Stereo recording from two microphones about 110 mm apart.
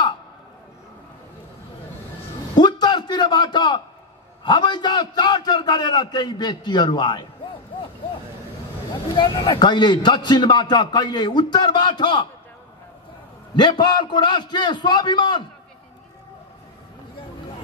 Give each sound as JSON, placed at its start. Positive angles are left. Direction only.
{"t": 2.5, "sound": "a sound", "side_deg": 40}
{"t": 4.5, "sound": "a man's voice", "side_deg": 40}
{"t": 9.1, "sound": "a man's voice", "side_deg": 45}
{"t": 13.6, "sound": "a man's voice", "side_deg": 40}